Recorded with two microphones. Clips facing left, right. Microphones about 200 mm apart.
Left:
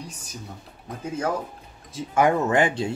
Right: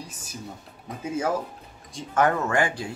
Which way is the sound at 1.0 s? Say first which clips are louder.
Even; 5° right (ahead or behind).